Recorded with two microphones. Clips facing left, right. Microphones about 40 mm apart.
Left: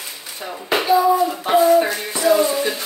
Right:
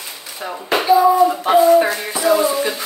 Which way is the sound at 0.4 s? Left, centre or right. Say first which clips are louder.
Right 2 dB; centre.